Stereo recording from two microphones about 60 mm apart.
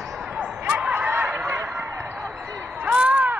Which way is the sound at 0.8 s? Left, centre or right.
Centre.